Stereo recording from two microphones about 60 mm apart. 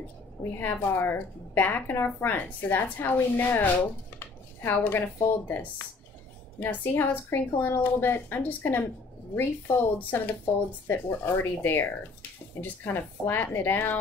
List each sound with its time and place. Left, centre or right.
0.4 s a woman's voice: left
4.8 s a woman's voice: left
6.7 s a woman's voice: left